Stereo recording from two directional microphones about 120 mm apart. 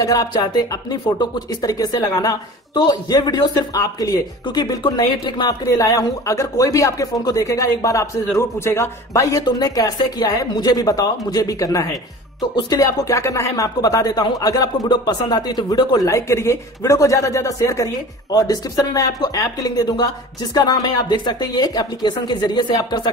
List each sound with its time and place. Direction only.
0.0 s speech: 30° left (ahead or behind)
5.7 s speech: 30° left (ahead or behind)